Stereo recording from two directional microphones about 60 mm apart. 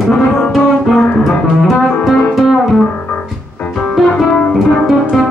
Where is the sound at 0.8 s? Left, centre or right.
Centre.